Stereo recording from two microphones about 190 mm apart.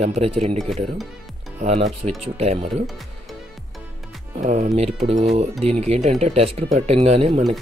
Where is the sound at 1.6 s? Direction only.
35° right (ahead or behind).